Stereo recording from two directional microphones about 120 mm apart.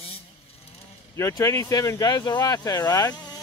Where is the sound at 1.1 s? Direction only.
25° left (ahead or behind).